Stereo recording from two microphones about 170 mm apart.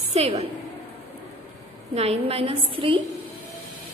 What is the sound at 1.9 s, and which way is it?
A woman's voice, 35° right (ahead or behind).